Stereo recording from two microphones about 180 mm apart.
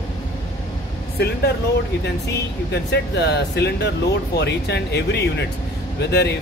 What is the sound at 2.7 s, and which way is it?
Speech, 70° left (ahead or behind).